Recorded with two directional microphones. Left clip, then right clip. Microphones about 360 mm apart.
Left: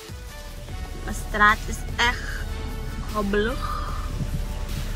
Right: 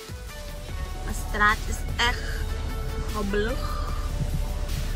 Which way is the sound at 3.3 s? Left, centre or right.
Centre.